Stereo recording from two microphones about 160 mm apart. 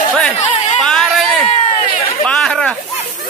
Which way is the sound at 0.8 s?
5° left (ahead or behind).